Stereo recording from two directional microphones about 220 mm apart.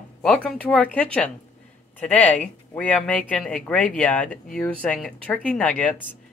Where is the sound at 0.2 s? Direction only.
5° left (ahead or behind).